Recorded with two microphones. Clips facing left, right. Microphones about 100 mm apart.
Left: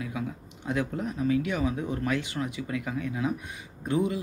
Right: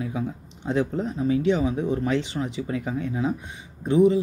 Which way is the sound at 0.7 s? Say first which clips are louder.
Right 5 dB; 25° right (ahead or behind).